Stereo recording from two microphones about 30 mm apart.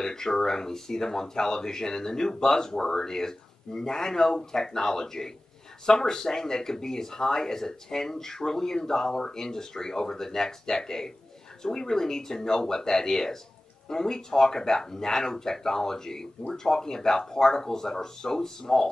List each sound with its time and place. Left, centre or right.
0.0 s speech: centre